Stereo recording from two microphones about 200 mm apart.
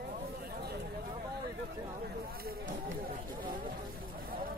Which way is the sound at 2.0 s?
55° right (ahead or behind).